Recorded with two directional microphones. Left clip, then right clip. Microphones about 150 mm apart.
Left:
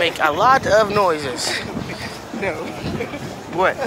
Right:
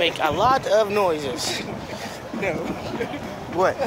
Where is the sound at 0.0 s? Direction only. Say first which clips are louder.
Left 4 dB; 15° right (ahead or behind).